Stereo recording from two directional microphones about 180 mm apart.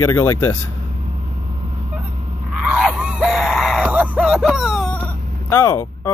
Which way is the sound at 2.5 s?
Centre (ahead or behind).